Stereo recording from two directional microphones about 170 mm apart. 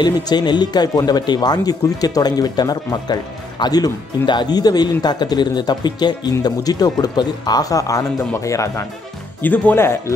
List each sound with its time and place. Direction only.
0.0 s speech: 25° left (ahead or behind)